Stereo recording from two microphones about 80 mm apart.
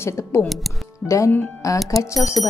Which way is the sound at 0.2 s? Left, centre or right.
Left.